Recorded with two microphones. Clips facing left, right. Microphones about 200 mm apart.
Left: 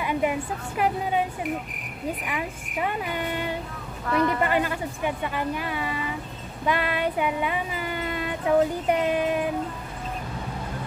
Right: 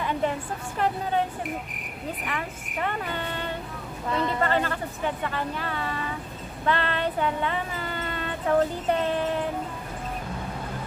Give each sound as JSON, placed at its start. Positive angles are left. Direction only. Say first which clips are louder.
{"t": 0.0, "sound": "speech", "louder": "left 2 dB", "side_deg": 10}
{"t": 2.8, "sound": "speech", "louder": "left 2 dB", "side_deg": 10}
{"t": 4.1, "sound": "a woman's voice", "louder": "left 4 dB", "side_deg": -20}
{"t": 4.4, "sound": "speech", "louder": "left 1 dB", "side_deg": 15}
{"t": 6.6, "sound": "a sound", "louder": "left 1 dB", "side_deg": 10}